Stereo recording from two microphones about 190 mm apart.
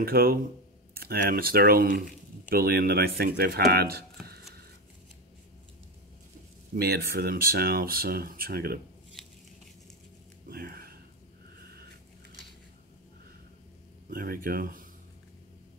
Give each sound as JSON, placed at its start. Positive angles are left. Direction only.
{"t": 0.0, "sound": "speech", "side_deg": -50}
{"t": 6.7, "sound": "speech", "side_deg": -55}
{"t": 10.5, "sound": "a sound", "side_deg": -50}
{"t": 14.1, "sound": "speech", "side_deg": -50}